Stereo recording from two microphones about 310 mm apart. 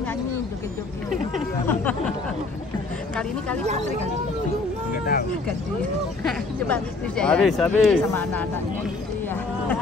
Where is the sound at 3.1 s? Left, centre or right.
Centre.